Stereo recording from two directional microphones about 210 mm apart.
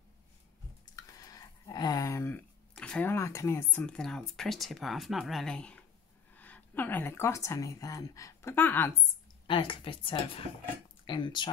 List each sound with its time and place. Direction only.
0.9 s a sound: 15° left (ahead or behind)
4.4 s speech: centre (ahead or behind)
9.5 s a woman's voice: 25° left (ahead or behind)